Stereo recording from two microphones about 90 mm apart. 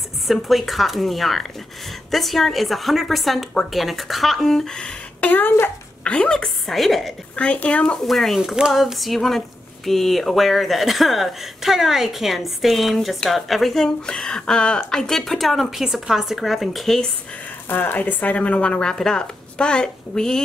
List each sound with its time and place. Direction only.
0.3 s speech: centre (ahead or behind)
5.3 s a woman's voice: 20° left (ahead or behind); by 7.2 s centre (ahead or behind)
7.3 s speech: 15° left (ahead or behind)
8.1 s speech: centre (ahead or behind)
17.6 s speech: 20° left (ahead or behind); by 20.4 s 5° left (ahead or behind)